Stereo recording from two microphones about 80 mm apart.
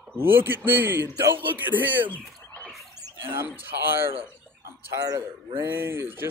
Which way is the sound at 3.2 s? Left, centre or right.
Right.